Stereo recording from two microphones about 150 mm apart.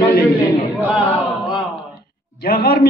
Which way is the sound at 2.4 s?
90° left.